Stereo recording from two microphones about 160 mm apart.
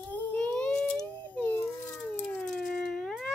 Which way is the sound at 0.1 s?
10° left (ahead or behind).